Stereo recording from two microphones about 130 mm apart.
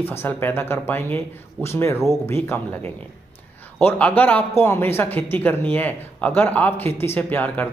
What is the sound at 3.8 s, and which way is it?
A man's voice, 15° left (ahead or behind).